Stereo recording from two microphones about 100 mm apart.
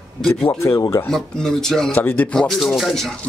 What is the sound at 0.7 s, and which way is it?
Speech, 35° left (ahead or behind).